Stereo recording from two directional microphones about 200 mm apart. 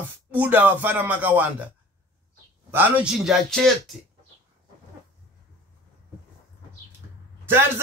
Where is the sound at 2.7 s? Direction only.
10° right (ahead or behind).